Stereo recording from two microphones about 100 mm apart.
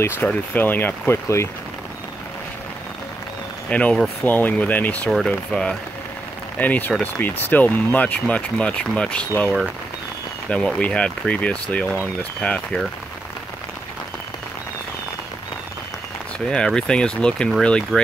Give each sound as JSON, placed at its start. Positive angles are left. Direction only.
{"t": 0.0, "sound": "speech", "side_deg": 15}
{"t": 3.7, "sound": "speech", "side_deg": 15}
{"t": 10.5, "sound": "speech", "side_deg": 10}
{"t": 16.4, "sound": "speech", "side_deg": 10}